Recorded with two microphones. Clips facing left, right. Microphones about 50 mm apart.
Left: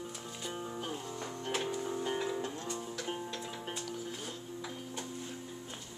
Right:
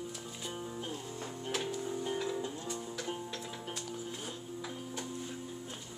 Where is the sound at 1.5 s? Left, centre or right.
Centre.